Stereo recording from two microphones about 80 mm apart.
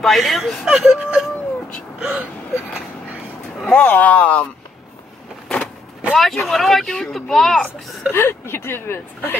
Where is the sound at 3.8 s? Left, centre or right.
Left.